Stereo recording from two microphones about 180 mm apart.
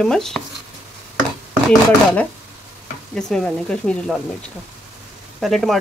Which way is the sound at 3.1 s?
5° left (ahead or behind).